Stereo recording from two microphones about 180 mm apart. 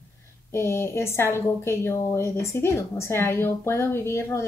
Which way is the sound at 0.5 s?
15° left (ahead or behind).